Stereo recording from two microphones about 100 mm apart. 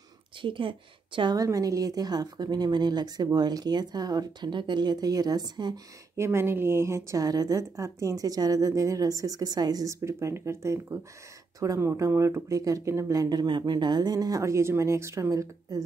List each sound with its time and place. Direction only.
0.4 s a woman's voice: 55° right (ahead or behind)
1.3 s speech: 35° right (ahead or behind)
6.1 s a woman's voice: 25° right (ahead or behind)